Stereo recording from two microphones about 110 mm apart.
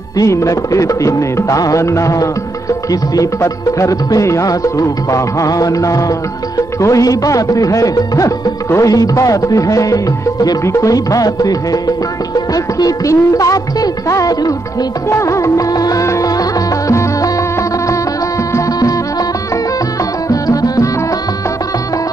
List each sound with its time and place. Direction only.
0.2 s music: 30° left (ahead or behind)
18.5 s music: 35° left (ahead or behind)
20.2 s music: 35° left (ahead or behind)